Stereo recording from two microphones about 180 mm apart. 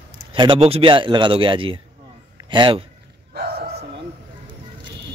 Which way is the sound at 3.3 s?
55° right (ahead or behind).